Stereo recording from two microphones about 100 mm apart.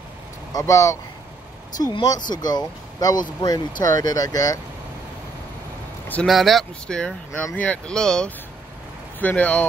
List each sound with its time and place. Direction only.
0.5 s speech: 30° left (ahead or behind)
2.0 s speech: 45° left (ahead or behind)
6.2 s speech: centre (ahead or behind)